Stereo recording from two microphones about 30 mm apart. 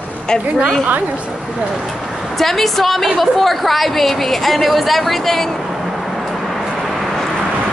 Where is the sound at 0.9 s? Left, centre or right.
Right.